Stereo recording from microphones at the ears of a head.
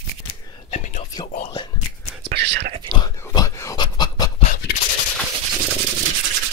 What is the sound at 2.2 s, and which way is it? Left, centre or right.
Whispering, right.